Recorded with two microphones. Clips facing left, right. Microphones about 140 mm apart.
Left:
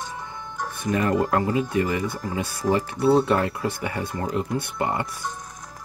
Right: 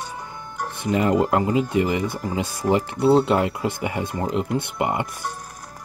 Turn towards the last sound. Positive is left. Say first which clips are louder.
# right 2 dB
turn(degrees=-20)  # may be behind; listen again after turning